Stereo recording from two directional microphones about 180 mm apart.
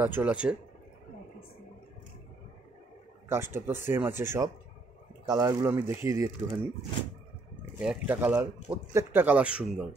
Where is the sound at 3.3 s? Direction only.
10° right (ahead or behind).